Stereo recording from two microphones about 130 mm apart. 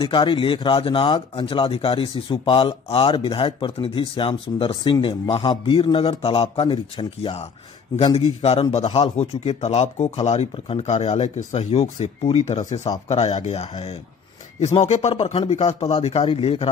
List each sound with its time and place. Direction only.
0.0 s speech: 40° left (ahead or behind)